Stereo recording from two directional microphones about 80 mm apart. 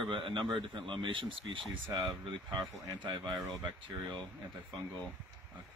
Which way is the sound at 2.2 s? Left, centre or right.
Right.